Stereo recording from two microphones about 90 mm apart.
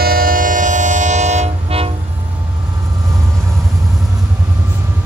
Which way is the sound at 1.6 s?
90° right.